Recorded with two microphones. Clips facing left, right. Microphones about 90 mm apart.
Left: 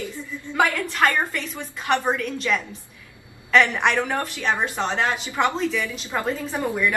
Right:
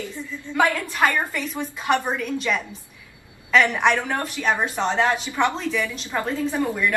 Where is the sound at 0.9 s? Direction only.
10° right (ahead or behind).